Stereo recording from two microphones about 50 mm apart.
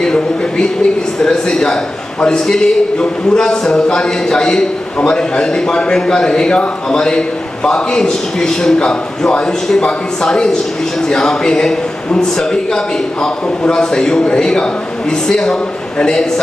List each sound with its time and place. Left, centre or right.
0.0 s a man's voice: centre